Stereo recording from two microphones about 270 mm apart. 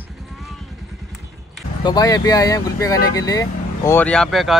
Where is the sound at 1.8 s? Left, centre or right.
Centre.